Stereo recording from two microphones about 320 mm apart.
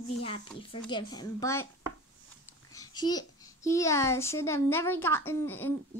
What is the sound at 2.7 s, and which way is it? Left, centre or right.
A child's voice, centre.